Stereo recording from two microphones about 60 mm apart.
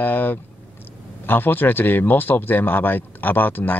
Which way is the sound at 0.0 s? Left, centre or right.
Left.